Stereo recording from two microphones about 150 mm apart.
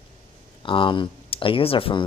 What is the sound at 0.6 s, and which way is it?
Speech, 35° left (ahead or behind).